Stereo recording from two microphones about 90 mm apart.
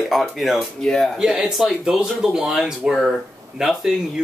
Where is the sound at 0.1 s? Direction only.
Centre (ahead or behind).